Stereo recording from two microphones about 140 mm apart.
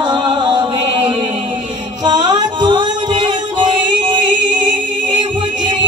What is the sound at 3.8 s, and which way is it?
Singing, 30° right (ahead or behind).